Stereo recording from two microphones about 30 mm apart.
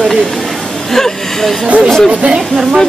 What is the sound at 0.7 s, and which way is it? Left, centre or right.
A woman's voice, centre.